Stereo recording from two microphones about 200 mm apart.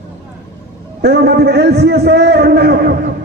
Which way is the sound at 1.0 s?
50° right (ahead or behind).